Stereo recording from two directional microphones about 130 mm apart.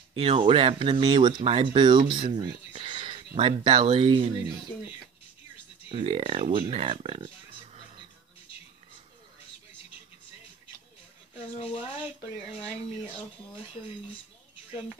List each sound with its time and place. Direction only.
0.1 s speech: 50° right (ahead or behind)
5.9 s speech: 45° right (ahead or behind)
11.3 s speech: 50° left (ahead or behind)